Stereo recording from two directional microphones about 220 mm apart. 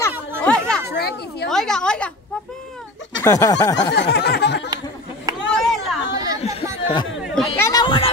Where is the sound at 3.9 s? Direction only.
50° left (ahead or behind).